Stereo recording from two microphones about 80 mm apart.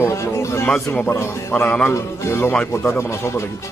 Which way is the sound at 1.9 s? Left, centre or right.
Left.